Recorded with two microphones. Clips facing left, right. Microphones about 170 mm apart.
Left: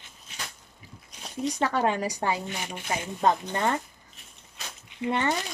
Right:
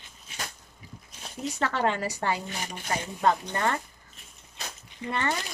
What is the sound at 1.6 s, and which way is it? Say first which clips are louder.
Speech: left 1 dB; 10° left (ahead or behind).